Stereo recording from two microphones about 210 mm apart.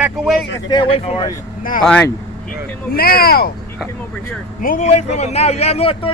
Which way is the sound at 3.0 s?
45° left (ahead or behind).